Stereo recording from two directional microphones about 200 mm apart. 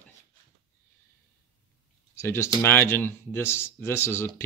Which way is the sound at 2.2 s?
15° left (ahead or behind).